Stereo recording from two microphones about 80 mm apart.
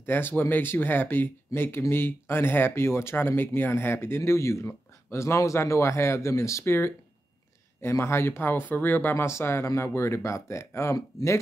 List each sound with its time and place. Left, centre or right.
0.0 s speech: left
9.1 s speech: left